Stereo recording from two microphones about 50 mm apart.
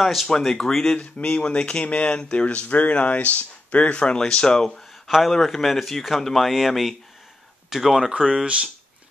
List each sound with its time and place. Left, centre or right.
0.0 s speech: centre